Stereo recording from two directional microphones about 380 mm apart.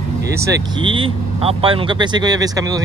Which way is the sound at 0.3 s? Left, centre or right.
Centre.